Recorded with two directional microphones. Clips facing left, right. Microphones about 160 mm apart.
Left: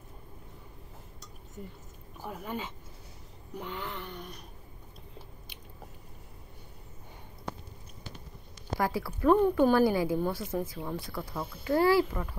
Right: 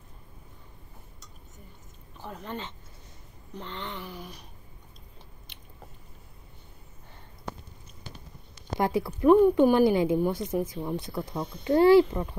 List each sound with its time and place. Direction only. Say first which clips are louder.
2.1 s speech: even; 10° left (ahead or behind)
3.5 s a sound: even; 10° left (ahead or behind)
8.7 s a woman's voice: right 4 dB; 20° right (ahead or behind)